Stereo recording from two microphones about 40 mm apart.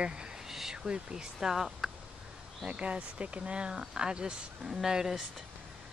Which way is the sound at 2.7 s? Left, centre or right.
Right.